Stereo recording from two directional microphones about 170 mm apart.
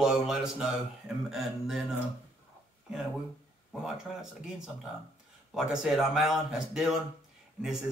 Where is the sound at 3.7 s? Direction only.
Centre (ahead or behind).